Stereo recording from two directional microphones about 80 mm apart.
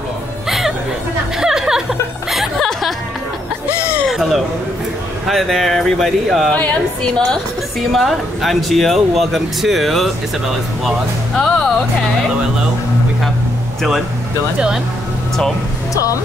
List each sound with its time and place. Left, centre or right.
0.5 s music: centre
4.1 s a sound: centre
5.2 s speech: centre
6.5 s a woman's voice: centre
7.8 s speech: centre
11.3 s speech: centre
15.9 s speech: left